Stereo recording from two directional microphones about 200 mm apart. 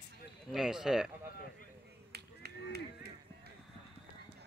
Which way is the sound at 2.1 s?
55° right (ahead or behind).